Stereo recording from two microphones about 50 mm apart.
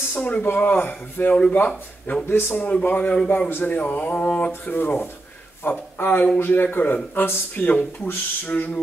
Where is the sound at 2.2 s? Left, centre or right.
Left.